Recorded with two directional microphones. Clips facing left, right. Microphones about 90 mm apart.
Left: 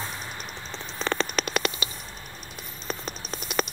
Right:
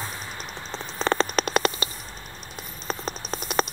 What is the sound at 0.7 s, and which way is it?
Mouse, 35° right (ahead or behind).